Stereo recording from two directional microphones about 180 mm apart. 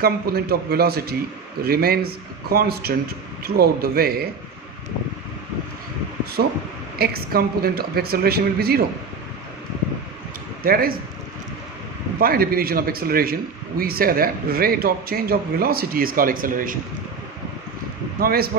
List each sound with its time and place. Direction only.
0.0 s a man's voice: 60° right (ahead or behind)
6.4 s a man's voice: 55° right (ahead or behind)
10.6 s a man's voice: 55° right (ahead or behind)
12.2 s a man's voice: 55° right (ahead or behind)
18.2 s a man's voice: 55° right (ahead or behind)